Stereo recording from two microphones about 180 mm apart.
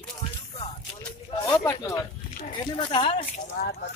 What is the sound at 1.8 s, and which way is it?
Speech, 15° left (ahead or behind).